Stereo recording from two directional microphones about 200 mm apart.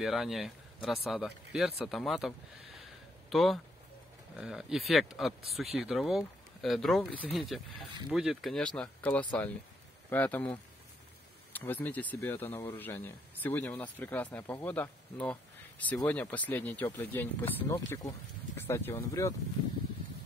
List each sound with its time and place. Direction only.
0.0 s speech: centre (ahead or behind)